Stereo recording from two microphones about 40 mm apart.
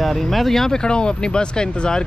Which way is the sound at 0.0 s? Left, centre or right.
Centre.